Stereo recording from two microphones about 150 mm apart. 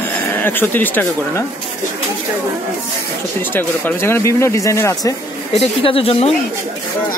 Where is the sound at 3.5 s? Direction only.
15° left (ahead or behind).